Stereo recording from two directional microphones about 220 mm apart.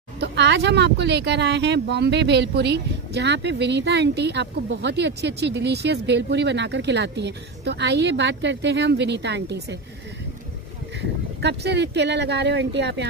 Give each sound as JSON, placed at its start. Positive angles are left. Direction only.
{"t": 0.2, "sound": "speech", "side_deg": -50}
{"t": 11.4, "sound": "speech", "side_deg": -50}